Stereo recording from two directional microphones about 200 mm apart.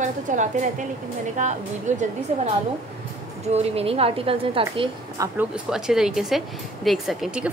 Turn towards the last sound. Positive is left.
turn(degrees=-5)  # may be behind; listen again after turning